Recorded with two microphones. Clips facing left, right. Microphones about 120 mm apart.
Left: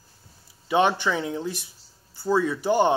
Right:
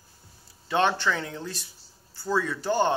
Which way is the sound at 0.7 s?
15° left (ahead or behind).